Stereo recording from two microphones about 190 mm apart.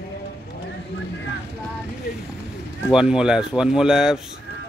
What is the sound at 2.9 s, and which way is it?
Speech, 5° right (ahead or behind).